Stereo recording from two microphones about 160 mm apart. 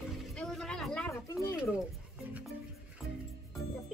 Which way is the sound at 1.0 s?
20° left (ahead or behind).